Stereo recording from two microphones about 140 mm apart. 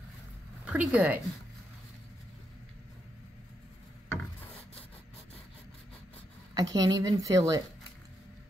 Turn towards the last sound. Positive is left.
turn(degrees=-25)  # may be behind; listen again after turning